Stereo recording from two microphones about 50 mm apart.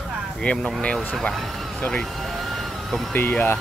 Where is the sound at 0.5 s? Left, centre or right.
Left.